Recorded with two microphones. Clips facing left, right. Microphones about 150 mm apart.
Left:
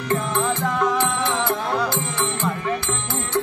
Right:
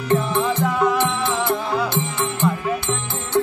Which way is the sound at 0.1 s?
15° right (ahead or behind).